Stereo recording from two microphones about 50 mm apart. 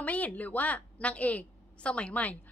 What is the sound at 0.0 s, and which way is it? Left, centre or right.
A woman's voice, left.